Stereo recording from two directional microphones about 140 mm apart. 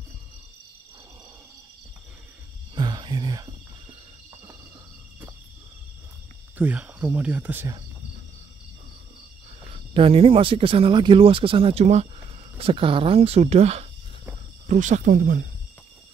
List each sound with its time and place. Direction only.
2.7 s whispering: 30° right (ahead or behind)
6.6 s speech: 10° right (ahead or behind)
9.9 s speech: 40° right (ahead or behind)
12.5 s speech: 40° right (ahead or behind)
14.7 s speech: 60° right (ahead or behind); by 15.4 s 80° right